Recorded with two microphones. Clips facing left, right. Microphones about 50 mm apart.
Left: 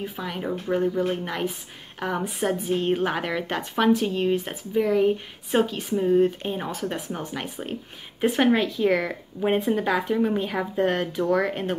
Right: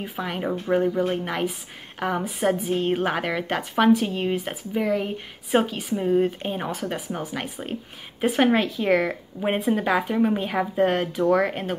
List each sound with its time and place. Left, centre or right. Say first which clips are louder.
0.0 s a woman's voice: right 2 dB; centre